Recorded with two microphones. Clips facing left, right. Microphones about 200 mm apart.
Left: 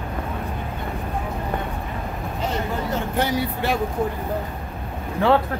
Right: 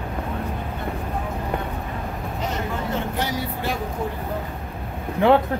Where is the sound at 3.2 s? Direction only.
65° left (ahead or behind).